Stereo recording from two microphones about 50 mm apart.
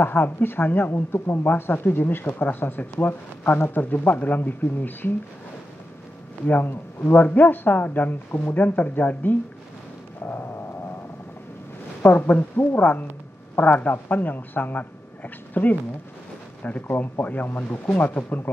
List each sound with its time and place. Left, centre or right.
0.0 s speech: left
6.4 s speech: left
12.0 s speech: left